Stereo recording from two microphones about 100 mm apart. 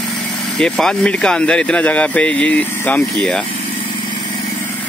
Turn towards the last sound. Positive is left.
turn(degrees=15)  # may be behind; listen again after turning